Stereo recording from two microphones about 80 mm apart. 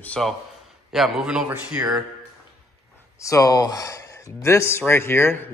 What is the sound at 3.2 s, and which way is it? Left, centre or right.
Speech, left.